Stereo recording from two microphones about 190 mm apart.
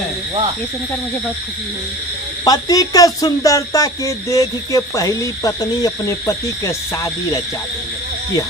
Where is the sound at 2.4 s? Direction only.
20° left (ahead or behind).